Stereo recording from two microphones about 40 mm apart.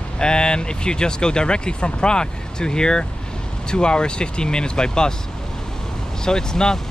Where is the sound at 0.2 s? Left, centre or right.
Left.